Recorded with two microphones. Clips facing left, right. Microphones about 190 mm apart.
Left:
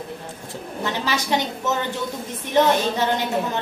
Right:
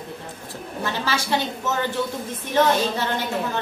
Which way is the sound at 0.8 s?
15° left (ahead or behind).